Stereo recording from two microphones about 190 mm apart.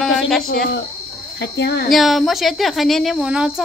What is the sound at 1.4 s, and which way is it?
Speech, 65° left (ahead or behind).